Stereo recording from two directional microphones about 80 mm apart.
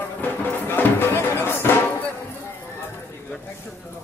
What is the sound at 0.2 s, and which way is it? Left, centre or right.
Music, left.